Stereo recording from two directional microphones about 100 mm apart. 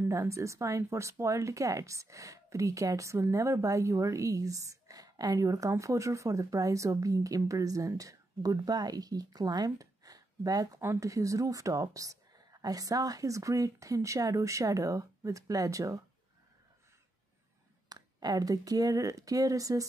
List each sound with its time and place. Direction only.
0.1 s speech: 30° right (ahead or behind)
17.8 s speech: 40° right (ahead or behind)